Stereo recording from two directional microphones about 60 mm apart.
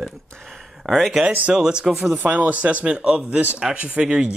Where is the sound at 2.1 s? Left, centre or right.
Right.